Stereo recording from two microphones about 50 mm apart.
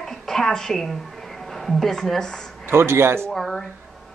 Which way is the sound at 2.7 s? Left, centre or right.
Right.